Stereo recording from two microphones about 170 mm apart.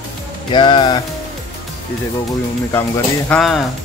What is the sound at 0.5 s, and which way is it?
Speech, 30° left (ahead or behind).